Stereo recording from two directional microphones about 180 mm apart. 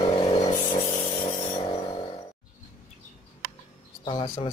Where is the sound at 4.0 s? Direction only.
25° left (ahead or behind).